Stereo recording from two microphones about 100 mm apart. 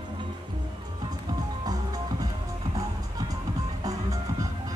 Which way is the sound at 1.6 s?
40° right (ahead or behind).